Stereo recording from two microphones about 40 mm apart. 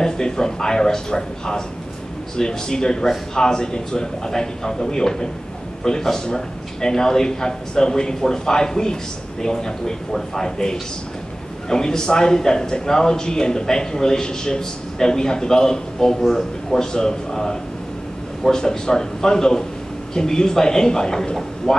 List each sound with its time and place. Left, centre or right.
0.0 s a man's voice: centre